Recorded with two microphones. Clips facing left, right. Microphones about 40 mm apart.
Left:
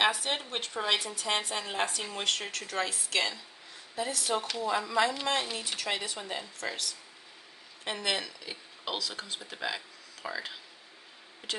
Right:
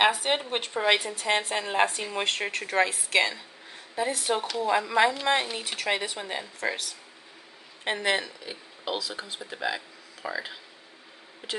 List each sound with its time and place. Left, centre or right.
0.0 s a woman's voice: right
1.0 s a woman's voice: right
7.8 s speech: right
8.5 s speech: centre